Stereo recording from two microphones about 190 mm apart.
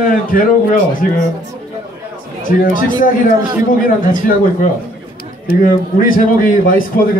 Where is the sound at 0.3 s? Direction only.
45° left (ahead or behind).